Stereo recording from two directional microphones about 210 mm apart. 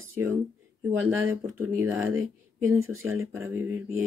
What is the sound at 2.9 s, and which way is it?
Speech, 80° right.